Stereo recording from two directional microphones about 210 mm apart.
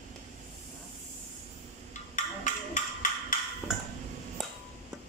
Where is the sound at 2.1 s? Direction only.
35° left (ahead or behind).